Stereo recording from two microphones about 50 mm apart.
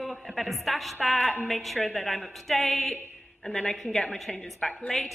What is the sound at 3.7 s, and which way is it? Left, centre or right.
A woman's voice, centre.